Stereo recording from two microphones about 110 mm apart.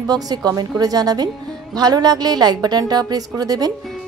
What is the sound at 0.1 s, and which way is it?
A woman's voice, 35° right (ahead or behind).